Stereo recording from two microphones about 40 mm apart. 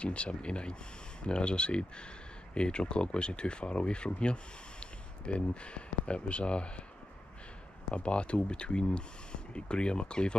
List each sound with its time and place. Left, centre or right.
0.0 s speech: left
7.9 s speech: left